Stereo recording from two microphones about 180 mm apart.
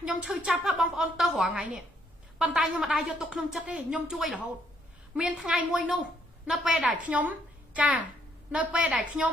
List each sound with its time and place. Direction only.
0.0 s a woman's voice: 5° right (ahead or behind)